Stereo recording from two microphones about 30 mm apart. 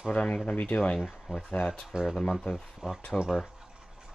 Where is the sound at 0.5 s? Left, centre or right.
Left.